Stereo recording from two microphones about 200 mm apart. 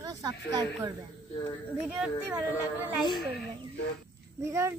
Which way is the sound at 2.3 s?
5° right (ahead or behind).